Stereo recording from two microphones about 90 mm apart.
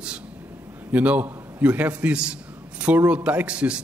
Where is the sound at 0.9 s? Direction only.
15° right (ahead or behind).